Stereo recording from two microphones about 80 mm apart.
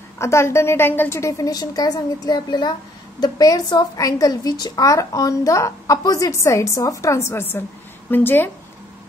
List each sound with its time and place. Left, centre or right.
0.2 s a woman's voice: left
1.4 s a woman's voice: left
3.2 s a woman's voice: left